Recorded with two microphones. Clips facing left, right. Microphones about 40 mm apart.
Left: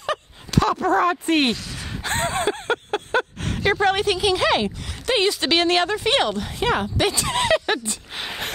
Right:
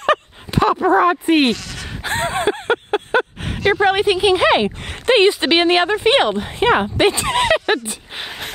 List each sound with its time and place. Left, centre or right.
0.5 s speech: right